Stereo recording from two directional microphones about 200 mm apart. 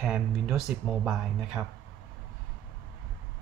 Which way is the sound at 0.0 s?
5° right (ahead or behind).